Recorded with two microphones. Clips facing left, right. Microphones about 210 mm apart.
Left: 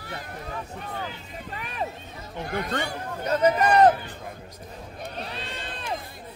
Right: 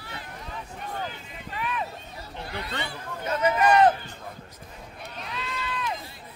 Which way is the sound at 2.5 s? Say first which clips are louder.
Left 6 dB; 45° left (ahead or behind).